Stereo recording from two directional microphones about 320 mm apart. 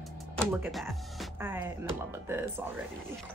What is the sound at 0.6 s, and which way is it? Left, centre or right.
A woman's voice, centre.